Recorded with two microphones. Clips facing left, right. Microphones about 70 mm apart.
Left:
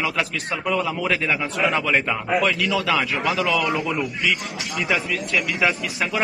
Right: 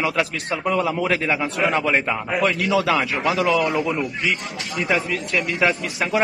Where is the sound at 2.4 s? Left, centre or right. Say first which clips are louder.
Right 2 dB; right.